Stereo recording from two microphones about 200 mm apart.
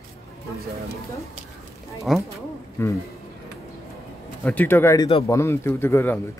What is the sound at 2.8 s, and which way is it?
Speech, 10° left (ahead or behind).